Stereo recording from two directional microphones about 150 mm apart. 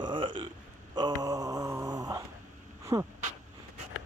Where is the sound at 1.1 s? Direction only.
25° right (ahead or behind).